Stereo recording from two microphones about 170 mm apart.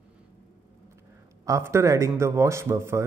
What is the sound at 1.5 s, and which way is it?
A man's voice, 15° right (ahead or behind).